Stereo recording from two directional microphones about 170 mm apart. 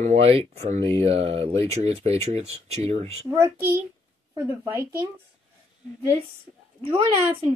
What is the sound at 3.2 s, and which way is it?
A child's voice, 15° right (ahead or behind).